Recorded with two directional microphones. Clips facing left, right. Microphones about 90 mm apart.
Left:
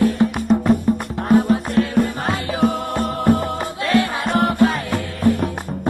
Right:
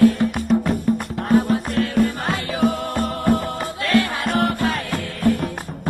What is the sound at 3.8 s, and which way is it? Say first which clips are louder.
Music: left 1 dB; centre (ahead or behind).